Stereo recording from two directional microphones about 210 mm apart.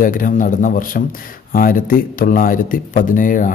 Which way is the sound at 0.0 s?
40° left (ahead or behind).